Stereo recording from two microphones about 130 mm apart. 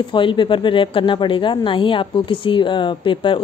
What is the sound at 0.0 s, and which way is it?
A woman's voice, 40° left (ahead or behind).